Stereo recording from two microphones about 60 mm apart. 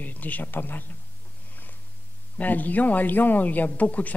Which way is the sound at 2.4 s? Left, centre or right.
Left.